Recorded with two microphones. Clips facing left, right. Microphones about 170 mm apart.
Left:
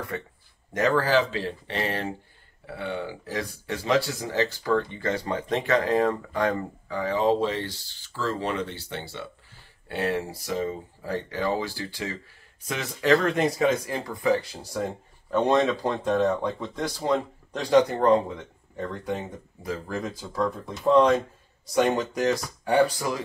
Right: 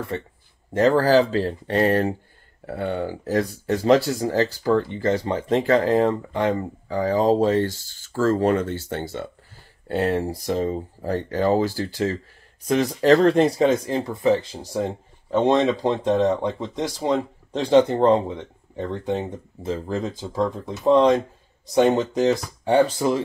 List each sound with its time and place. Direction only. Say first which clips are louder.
0.1 s speech: right 4 dB; 25° right (ahead or behind)
6.9 s speech: right 4 dB; 35° right (ahead or behind)